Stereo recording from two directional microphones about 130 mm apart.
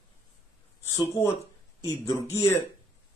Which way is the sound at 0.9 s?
25° left (ahead or behind).